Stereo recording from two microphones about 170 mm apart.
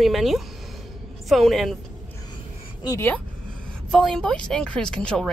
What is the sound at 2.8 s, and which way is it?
Speech, 15° left (ahead or behind).